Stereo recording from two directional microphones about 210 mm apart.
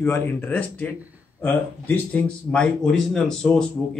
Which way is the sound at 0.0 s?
10° left (ahead or behind).